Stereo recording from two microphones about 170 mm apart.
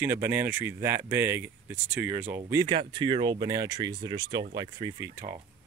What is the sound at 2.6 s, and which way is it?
Speech, 30° right (ahead or behind).